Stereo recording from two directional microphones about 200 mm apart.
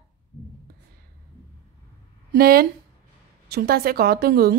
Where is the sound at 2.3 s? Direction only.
50° right (ahead or behind).